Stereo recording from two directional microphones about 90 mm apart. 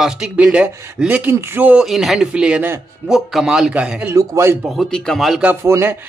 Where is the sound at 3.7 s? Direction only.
15° right (ahead or behind).